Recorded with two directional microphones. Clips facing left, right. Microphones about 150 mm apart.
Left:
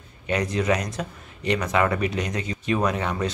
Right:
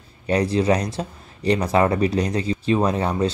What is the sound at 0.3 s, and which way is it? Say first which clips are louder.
Speech: right 4 dB; 30° right (ahead or behind).